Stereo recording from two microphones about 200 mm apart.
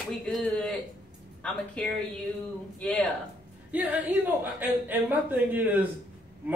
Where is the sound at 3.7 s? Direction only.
5° right (ahead or behind).